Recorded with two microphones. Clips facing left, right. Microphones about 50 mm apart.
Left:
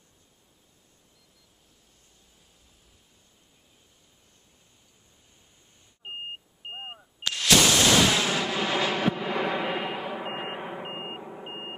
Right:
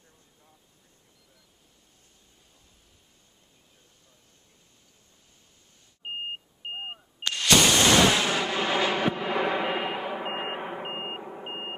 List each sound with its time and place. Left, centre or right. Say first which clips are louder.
6.7 s beep: right 3 dB; centre
8.0 s artillery fire: right 1 dB; centre